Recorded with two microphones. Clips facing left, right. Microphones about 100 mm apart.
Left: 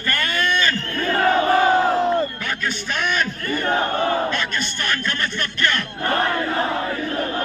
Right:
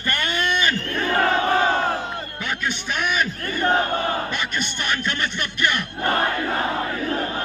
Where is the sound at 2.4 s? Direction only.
20° right (ahead or behind).